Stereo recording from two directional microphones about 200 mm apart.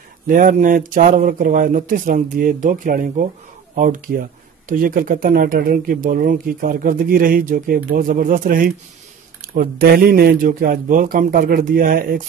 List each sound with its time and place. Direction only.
0.3 s speech: 40° right (ahead or behind)